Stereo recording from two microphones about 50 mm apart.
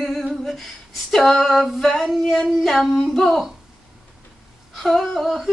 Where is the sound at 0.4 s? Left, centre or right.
Centre.